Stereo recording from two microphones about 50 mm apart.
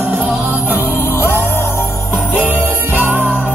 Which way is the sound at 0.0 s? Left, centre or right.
Right.